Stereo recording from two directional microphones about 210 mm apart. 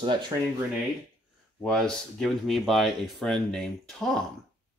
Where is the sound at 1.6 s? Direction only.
5° left (ahead or behind).